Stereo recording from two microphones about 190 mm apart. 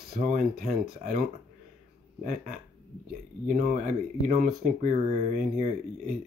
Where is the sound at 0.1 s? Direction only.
45° right (ahead or behind).